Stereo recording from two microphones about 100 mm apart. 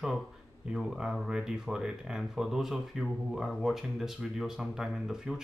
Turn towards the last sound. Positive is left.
turn(degrees=-5)  # may be behind; listen again after turning